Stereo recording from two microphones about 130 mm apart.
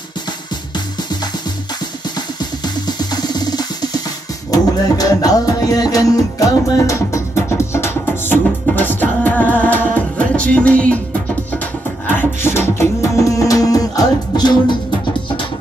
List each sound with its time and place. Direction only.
2.1 s music: 35° left (ahead or behind); by 11.0 s 10° left (ahead or behind)
12.1 s beatboxing: 15° left (ahead or behind); by 14.8 s 35° left (ahead or behind)